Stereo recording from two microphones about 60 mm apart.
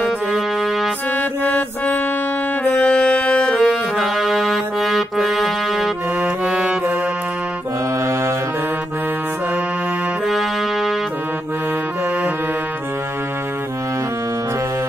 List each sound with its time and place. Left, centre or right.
0.3 s music: centre
1.1 s music: left
3.9 s music: centre
6.2 s music: centre
10.2 s music: centre